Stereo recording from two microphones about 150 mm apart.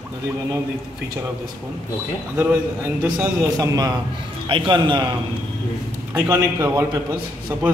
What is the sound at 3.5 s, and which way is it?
A man's voice, 25° right (ahead or behind).